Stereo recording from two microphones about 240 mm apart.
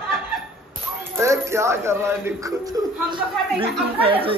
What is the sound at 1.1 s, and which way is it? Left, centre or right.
Speech, centre.